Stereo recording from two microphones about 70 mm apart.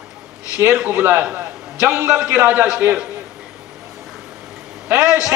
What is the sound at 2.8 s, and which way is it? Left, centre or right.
Speech, right.